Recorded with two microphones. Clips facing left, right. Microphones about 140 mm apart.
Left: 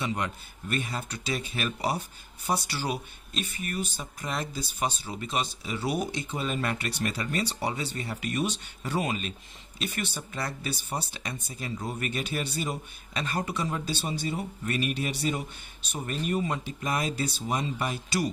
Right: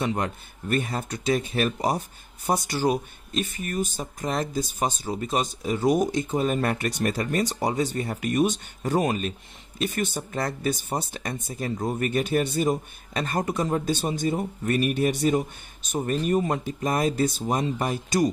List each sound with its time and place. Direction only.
0.0 s speech: 45° right (ahead or behind)